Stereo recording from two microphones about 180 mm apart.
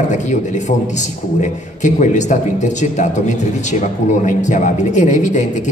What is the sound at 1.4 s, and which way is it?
A man's voice, 45° left (ahead or behind).